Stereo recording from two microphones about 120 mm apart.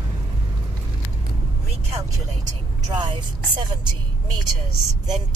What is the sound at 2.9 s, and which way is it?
Speech, 40° right (ahead or behind).